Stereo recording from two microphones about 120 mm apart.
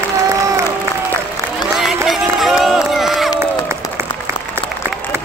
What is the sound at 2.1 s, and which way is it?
Run, centre (ahead or behind).